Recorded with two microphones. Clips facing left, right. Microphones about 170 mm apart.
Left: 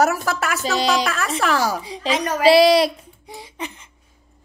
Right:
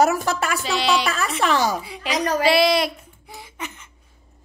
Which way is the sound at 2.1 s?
35° right (ahead or behind).